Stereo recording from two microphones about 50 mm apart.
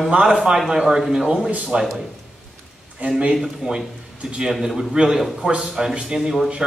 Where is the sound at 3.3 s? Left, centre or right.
Centre.